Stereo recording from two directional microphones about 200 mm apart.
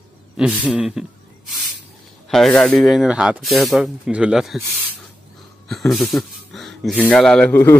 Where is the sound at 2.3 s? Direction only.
Centre (ahead or behind).